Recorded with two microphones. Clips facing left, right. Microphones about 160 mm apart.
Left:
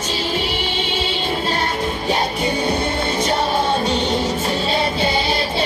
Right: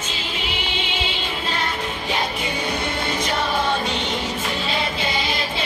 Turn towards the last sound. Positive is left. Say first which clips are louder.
# left 5 dB
turn(degrees=35)  # may be behind; listen again after turning